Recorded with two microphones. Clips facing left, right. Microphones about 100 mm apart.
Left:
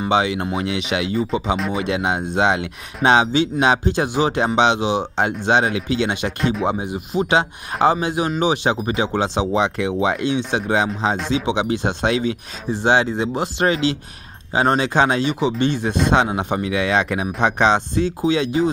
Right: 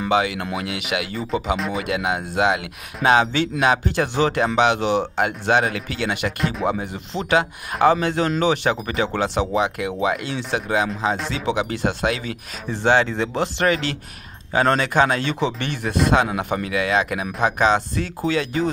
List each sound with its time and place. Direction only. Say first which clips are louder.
0.1 s speech: left 2 dB; 25° left (ahead or behind)
15.3 s speech: left 5 dB; 10° left (ahead or behind)
15.7 s speech: left 1 dB; 25° left (ahead or behind)